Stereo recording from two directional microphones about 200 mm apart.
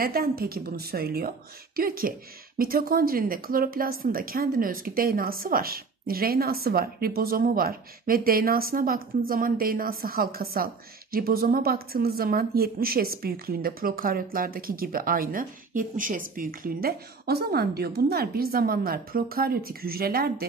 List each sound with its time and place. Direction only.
0.0 s a woman's voice: 50° right (ahead or behind)